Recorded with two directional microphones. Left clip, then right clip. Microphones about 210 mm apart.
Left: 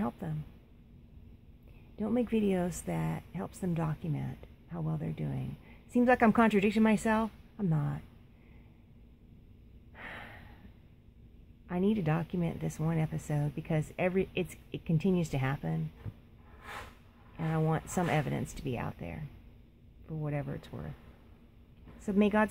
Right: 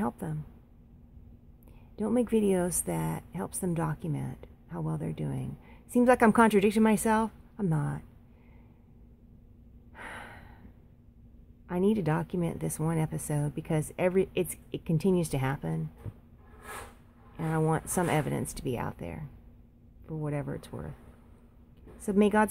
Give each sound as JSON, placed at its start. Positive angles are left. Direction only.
{"t": 0.0, "sound": "a sound", "side_deg": 0}
{"t": 2.0, "sound": "a woman's voice", "side_deg": -5}
{"t": 9.9, "sound": "gasp", "side_deg": -5}
{"t": 11.6, "sound": "a woman's voice", "side_deg": -5}
{"t": 17.4, "sound": "a woman's voice", "side_deg": 0}
{"t": 22.0, "sound": "a woman's voice", "side_deg": -5}